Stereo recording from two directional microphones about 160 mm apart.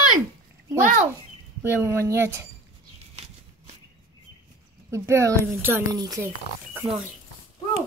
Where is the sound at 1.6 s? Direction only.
15° right (ahead or behind).